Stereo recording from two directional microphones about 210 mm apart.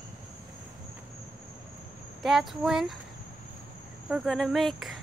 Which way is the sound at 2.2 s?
Centre (ahead or behind).